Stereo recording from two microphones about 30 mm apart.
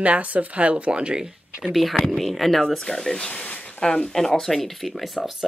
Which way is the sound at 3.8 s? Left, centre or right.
Left.